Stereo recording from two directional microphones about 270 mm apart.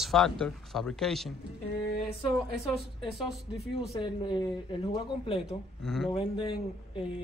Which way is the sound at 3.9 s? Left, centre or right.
Centre.